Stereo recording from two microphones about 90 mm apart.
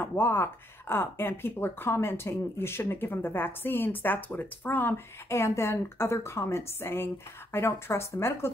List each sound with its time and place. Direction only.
0.0 s speech: 25° left (ahead or behind)